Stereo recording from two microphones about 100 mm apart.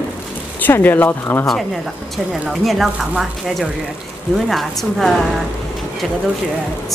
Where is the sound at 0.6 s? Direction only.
20° left (ahead or behind).